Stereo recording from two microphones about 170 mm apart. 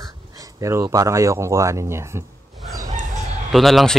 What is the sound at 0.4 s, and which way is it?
Speech, 20° right (ahead or behind).